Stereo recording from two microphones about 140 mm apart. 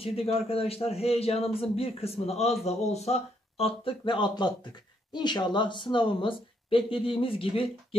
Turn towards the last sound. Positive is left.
turn(degrees=40)  # may be behind; listen again after turning